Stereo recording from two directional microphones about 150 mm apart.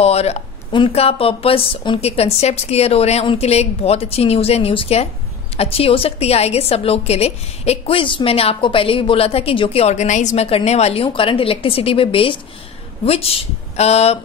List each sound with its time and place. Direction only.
0.0 s a woman's voice: 45° left (ahead or behind)